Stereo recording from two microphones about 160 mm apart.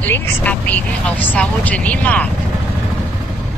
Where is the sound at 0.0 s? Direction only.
10° left (ahead or behind).